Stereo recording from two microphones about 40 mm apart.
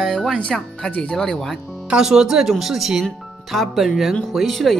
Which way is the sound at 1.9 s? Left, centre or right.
Centre.